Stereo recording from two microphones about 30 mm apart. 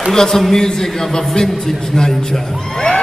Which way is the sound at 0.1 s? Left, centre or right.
Centre.